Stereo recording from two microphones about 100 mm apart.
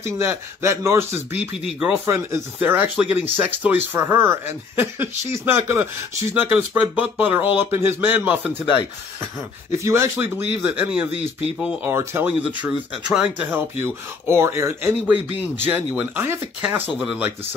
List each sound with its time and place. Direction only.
0.0 s speech: 25° right (ahead or behind)
1.3 s speech: 15° right (ahead or behind)
2.0 s speech: 25° right (ahead or behind)
9.8 s speech: 25° right (ahead or behind)
12.3 s speech: 15° right (ahead or behind)
17.0 s speech: 10° right (ahead or behind)